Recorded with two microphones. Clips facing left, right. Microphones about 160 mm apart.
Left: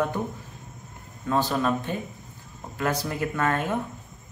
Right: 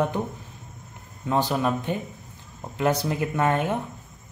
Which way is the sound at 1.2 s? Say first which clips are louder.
Right 1 dB; 15° right (ahead or behind).